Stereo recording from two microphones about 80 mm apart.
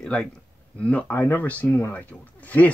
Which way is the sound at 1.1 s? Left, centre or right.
Left.